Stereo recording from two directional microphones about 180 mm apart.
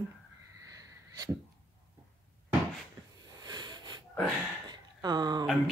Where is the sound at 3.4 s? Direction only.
25° right (ahead or behind).